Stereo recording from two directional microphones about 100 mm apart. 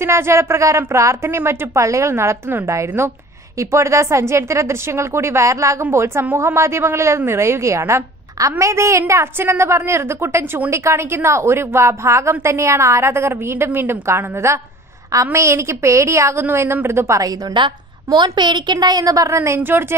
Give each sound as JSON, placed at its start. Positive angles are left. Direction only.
{"t": 0.0, "sound": "a woman's voice", "side_deg": -25}
{"t": 17.6, "sound": "a woman's voice", "side_deg": -50}